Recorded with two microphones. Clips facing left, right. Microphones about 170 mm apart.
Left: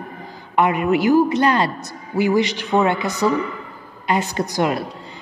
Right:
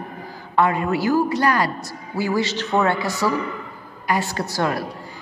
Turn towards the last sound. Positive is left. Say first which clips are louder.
# left 3 dB
turn(degrees=20)  # may be behind; listen again after turning